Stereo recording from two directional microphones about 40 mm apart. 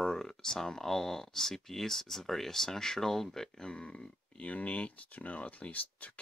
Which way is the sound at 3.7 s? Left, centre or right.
Left.